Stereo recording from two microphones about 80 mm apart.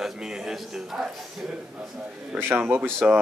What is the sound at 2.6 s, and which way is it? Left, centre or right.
Speech, right.